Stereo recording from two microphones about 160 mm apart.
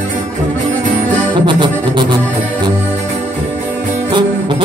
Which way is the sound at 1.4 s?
30° right (ahead or behind).